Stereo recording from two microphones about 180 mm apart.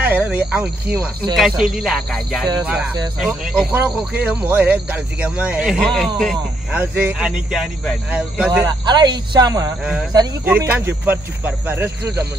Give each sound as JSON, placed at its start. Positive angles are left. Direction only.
{"t": 0.0, "sound": "speech", "side_deg": -10}
{"t": 6.8, "sound": "speech", "side_deg": -10}
{"t": 8.6, "sound": "speech", "side_deg": -25}
{"t": 10.4, "sound": "speech", "side_deg": -10}